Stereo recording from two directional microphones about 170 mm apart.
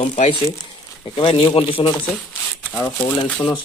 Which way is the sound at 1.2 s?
30° left (ahead or behind).